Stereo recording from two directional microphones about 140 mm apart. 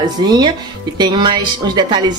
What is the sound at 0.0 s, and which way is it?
A woman's voice, 30° right (ahead or behind).